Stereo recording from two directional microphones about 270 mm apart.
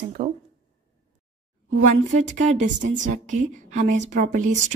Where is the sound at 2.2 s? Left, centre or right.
Right.